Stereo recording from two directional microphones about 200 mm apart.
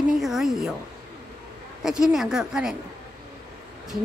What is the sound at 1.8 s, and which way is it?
Speech, centre (ahead or behind).